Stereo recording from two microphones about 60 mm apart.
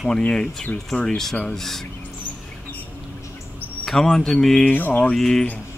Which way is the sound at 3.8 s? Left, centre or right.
Centre.